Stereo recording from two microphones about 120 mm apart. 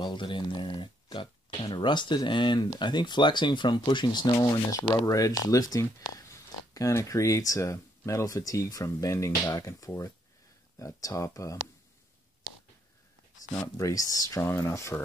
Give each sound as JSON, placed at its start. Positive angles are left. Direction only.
{"t": 0.0, "sound": "speech", "side_deg": 40}
{"t": 13.7, "sound": "speech", "side_deg": 30}